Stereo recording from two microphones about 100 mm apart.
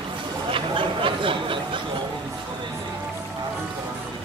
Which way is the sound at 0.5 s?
60° right (ahead or behind).